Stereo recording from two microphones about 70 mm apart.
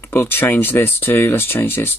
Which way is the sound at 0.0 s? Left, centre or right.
Left.